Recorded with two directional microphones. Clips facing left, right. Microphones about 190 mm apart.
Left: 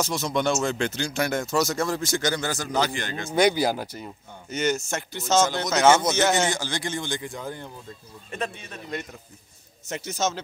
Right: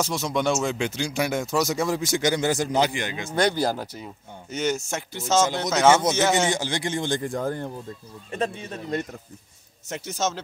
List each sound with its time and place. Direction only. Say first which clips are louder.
0.0 s speech: even; 5° right (ahead or behind)
3.3 s speech: left 2 dB; 5° left (ahead or behind)
3.8 s speech: even; 5° right (ahead or behind)
6.5 s speech: right 3 dB; 25° right (ahead or behind)
7.1 s speech: right 6 dB; 45° right (ahead or behind)
8.3 s speech: right 4 dB; 30° right (ahead or behind)
9.8 s speech: even; 5° right (ahead or behind)